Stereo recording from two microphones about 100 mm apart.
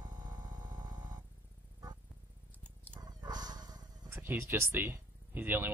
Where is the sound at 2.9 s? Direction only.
40° right (ahead or behind).